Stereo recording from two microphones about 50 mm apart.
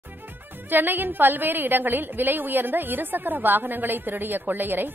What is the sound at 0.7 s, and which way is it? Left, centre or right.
A woman's voice, right.